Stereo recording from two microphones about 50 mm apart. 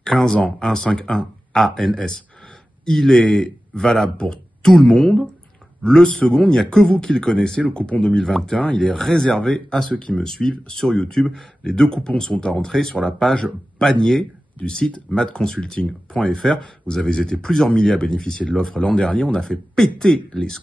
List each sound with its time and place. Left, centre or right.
0.0 s speech: centre
8.0 s speech: centre